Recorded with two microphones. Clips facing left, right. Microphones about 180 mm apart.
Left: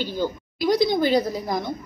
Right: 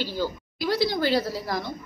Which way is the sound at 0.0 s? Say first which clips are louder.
Left 2 dB; 20° left (ahead or behind).